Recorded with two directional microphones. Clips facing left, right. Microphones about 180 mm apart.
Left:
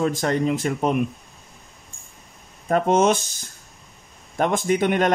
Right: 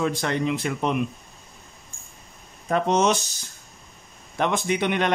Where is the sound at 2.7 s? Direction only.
50° left (ahead or behind).